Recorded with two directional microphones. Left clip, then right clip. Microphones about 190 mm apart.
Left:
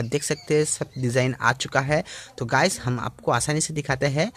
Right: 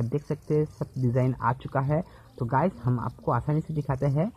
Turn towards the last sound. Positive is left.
turn(degrees=25)  # may be behind; listen again after turning